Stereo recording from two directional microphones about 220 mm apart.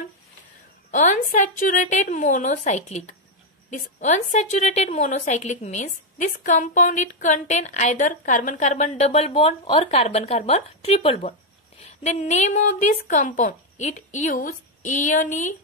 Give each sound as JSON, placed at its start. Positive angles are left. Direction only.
{"t": 0.9, "sound": "a woman's voice", "side_deg": 35}